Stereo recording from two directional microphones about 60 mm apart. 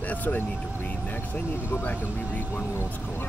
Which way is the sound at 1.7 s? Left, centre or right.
Left.